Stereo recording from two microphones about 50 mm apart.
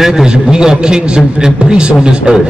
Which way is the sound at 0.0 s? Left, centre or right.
Centre.